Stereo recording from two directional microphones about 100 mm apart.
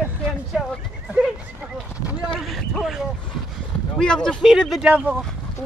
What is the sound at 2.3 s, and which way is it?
Speech, centre (ahead or behind).